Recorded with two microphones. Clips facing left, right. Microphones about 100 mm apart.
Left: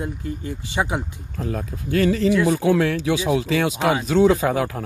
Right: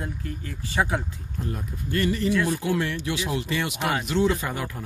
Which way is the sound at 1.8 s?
90° left.